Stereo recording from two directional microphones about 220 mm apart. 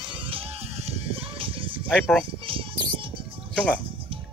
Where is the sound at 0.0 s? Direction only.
25° right (ahead or behind).